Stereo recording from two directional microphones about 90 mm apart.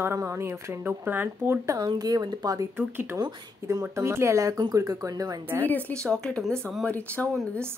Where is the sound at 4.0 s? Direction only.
30° right (ahead or behind).